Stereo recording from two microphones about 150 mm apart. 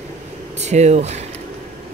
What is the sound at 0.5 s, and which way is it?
Speech, 50° right (ahead or behind).